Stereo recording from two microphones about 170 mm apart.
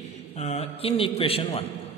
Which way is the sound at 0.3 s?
40° left (ahead or behind).